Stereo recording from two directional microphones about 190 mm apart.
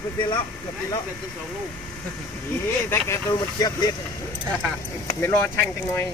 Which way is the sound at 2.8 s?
15° left (ahead or behind).